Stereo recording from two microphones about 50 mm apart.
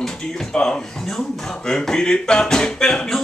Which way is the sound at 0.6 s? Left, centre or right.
Centre.